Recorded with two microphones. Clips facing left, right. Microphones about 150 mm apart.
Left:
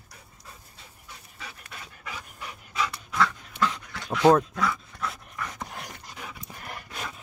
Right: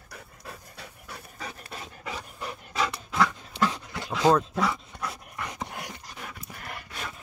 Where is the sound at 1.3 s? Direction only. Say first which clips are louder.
Right 4 dB; 40° right (ahead or behind); by 3.4 s 20° right (ahead or behind).